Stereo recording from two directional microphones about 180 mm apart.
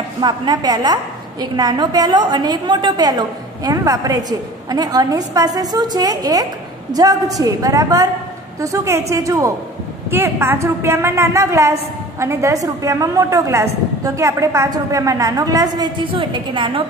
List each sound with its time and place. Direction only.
0.2 s a woman's voice: 25° right (ahead or behind)